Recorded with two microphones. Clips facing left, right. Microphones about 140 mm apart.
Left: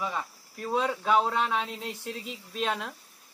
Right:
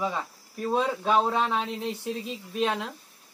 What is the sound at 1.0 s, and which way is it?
Speech, 20° right (ahead or behind).